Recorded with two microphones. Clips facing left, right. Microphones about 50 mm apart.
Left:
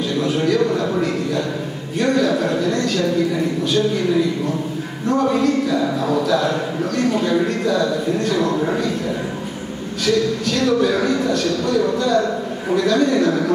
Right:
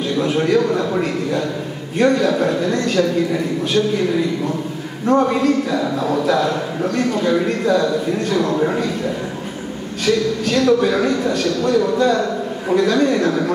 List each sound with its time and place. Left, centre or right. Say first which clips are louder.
0.2 s a man's voice: right 2 dB; right
5.0 s a man's voice: right 2 dB; right
8.4 s a man's voice: right 1 dB; centre
10.4 s a man's voice: right 2 dB; right